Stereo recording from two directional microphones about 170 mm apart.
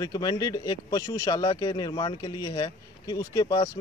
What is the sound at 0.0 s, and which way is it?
Speech, 20° left (ahead or behind).